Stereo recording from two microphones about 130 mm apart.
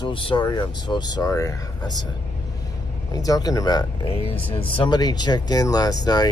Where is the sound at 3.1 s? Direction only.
30° left (ahead or behind).